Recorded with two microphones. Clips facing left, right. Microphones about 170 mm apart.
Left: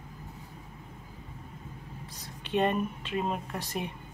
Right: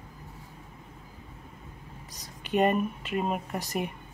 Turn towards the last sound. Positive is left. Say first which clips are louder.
# right 3 dB
turn(degrees=-10)  # may be behind; listen again after turning